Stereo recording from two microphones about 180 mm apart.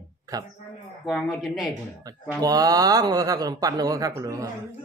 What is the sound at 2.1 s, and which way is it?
Speech, 20° right (ahead or behind).